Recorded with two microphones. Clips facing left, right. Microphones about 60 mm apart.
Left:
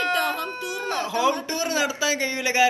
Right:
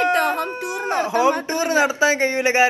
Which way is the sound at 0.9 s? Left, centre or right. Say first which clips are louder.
Right 5 dB; right.